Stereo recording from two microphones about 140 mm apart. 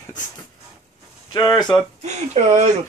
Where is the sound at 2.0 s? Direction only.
55° right (ahead or behind).